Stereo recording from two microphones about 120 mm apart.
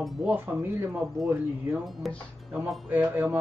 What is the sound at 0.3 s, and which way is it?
Speech, 15° right (ahead or behind).